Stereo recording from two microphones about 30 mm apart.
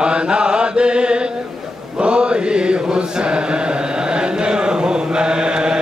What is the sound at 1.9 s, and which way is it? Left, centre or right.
Chant, right.